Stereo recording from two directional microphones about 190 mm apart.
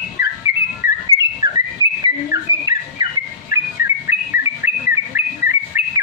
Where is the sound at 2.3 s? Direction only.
20° right (ahead or behind).